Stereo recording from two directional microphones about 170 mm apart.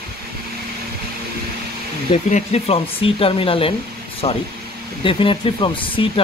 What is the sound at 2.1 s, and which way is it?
Speech, 40° left (ahead or behind).